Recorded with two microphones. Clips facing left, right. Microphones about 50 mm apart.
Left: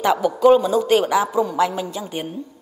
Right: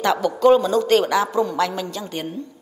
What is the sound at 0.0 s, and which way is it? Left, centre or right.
A man's voice, centre.